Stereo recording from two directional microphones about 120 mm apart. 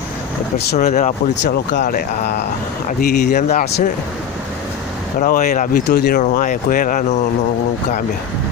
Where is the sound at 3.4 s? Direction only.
90° left.